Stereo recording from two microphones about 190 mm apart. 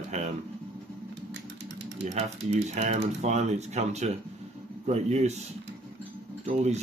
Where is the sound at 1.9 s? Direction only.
35° right (ahead or behind).